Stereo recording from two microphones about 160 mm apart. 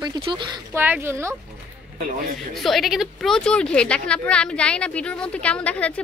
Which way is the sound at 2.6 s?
Centre (ahead or behind).